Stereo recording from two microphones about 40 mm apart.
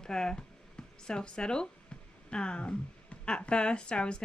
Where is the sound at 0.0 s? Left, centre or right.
Centre.